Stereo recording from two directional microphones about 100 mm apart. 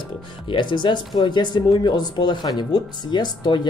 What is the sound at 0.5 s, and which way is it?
Speech, 55° left (ahead or behind).